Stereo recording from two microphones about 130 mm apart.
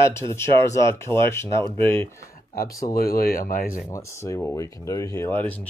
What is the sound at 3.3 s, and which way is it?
Speech, 90° left.